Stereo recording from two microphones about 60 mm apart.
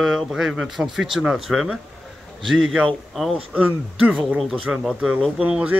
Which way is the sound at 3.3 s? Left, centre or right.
Right.